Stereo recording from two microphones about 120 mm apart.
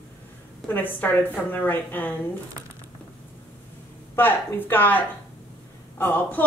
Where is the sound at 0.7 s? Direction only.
15° left (ahead or behind).